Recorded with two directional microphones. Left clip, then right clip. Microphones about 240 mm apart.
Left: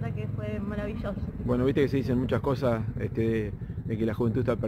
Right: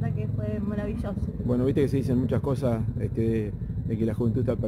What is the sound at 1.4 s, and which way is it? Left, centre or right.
Speech, centre.